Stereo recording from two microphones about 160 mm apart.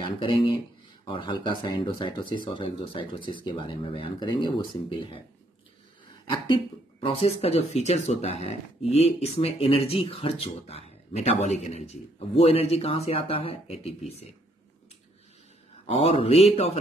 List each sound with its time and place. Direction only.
0.0 s speech: 30° left (ahead or behind)
6.3 s speech: 35° left (ahead or behind)
15.9 s speech: 40° left (ahead or behind)